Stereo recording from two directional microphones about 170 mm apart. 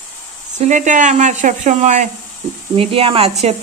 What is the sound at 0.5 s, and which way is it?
Speech, 45° right (ahead or behind).